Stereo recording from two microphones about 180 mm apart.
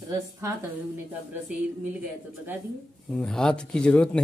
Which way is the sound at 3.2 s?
5° left (ahead or behind).